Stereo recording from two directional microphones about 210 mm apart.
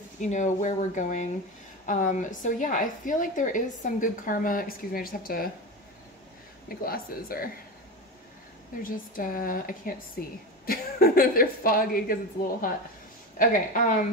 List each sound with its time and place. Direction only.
0.2 s a woman's voice: 35° left (ahead or behind)
6.7 s a woman's voice: 45° left (ahead or behind)
8.8 s a woman's voice: 40° left (ahead or behind)
13.4 s a woman's voice: 40° left (ahead or behind)